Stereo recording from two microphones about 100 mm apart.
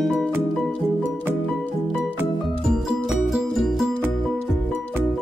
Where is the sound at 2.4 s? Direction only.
Centre (ahead or behind).